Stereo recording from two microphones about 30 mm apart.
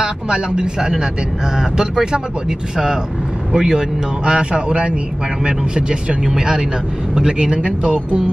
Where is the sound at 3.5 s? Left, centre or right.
Right.